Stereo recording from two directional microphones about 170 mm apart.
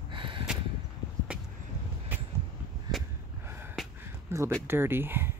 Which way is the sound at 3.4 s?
15° right (ahead or behind).